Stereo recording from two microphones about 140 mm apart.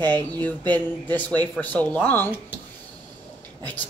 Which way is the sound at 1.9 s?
10° left (ahead or behind).